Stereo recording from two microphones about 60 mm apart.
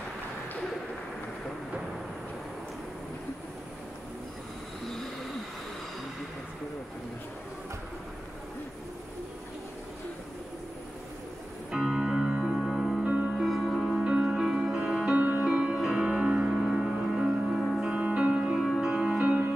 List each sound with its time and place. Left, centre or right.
4.8 s train: centre
11.7 s music: centre
13.0 s music: right
13.4 s music: centre
18.0 s music: centre
18.6 s music: centre